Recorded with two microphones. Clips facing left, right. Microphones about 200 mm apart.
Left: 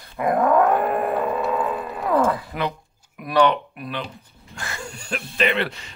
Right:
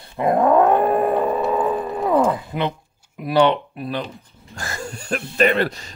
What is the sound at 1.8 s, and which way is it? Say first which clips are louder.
Dog: even; 20° right (ahead or behind).